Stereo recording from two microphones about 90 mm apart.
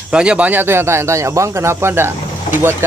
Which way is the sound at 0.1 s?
10° right (ahead or behind).